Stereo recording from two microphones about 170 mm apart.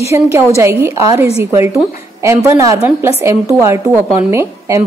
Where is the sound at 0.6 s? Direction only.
15° right (ahead or behind).